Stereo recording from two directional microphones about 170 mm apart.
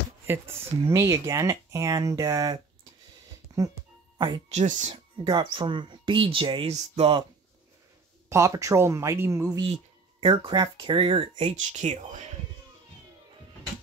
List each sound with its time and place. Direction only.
0.3 s speech: 15° right (ahead or behind)
3.5 s music: 20° right (ahead or behind)
4.5 s speech: 40° right (ahead or behind)
5.1 s speech: 30° right (ahead or behind)
8.3 s speech: 15° right (ahead or behind)
10.2 s speech: 30° right (ahead or behind)
11.5 s speech: 45° right (ahead or behind)